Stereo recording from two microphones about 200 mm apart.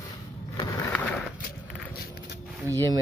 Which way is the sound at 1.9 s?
50° left (ahead or behind).